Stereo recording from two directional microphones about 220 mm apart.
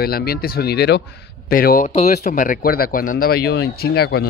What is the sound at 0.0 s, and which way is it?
Speech, 45° left (ahead or behind).